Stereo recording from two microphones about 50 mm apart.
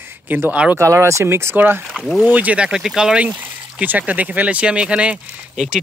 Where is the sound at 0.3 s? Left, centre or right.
Right.